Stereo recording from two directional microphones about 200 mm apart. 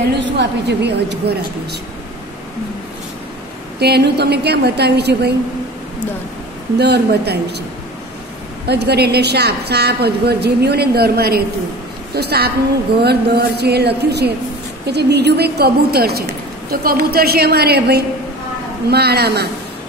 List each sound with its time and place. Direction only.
0.2 s a woman's voice: 60° right (ahead or behind)
3.8 s a woman's voice: 55° right (ahead or behind)
6.8 s a woman's voice: 55° right (ahead or behind)
8.6 s a woman's voice: 55° right (ahead or behind)